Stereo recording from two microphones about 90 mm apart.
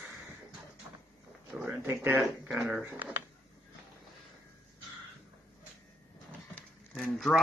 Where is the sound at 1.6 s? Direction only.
20° right (ahead or behind).